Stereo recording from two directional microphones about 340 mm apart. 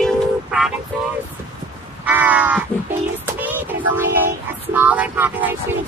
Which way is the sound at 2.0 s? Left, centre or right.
Centre.